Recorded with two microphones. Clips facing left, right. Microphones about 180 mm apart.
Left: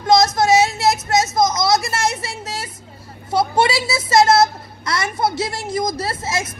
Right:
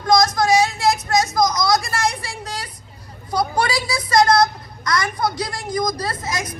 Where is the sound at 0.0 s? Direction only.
25° left (ahead or behind).